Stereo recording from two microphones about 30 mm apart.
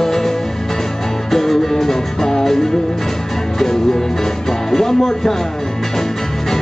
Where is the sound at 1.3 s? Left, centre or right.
Centre.